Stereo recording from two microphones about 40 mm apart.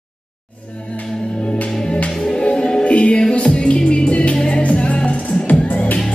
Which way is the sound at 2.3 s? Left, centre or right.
Left.